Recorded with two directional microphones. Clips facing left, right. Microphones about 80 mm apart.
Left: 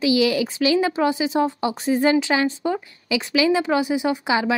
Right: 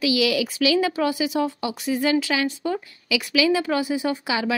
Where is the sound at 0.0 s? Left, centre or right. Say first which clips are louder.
Left 2 dB; left.